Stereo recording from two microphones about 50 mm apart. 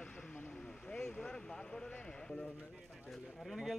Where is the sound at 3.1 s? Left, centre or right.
Centre.